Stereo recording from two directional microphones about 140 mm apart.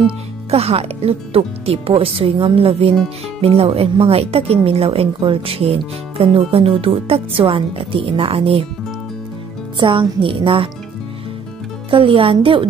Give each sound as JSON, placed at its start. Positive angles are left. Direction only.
{"t": 0.0, "sound": "speech", "side_deg": -45}
{"t": 9.8, "sound": "a woman's voice", "side_deg": -35}
{"t": 11.9, "sound": "a woman's voice", "side_deg": -40}